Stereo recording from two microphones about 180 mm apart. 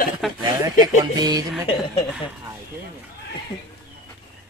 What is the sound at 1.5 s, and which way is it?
Speech, centre (ahead or behind).